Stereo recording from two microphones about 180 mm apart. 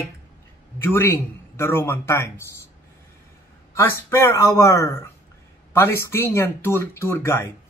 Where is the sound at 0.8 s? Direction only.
15° left (ahead or behind).